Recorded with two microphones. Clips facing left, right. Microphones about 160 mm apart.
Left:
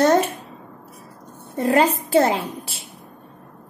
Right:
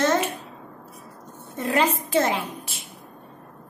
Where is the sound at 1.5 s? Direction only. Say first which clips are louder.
Left 5 dB; 35° left (ahead or behind).